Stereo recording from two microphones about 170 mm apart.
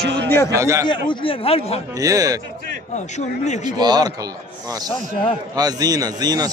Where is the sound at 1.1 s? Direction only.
30° left (ahead or behind).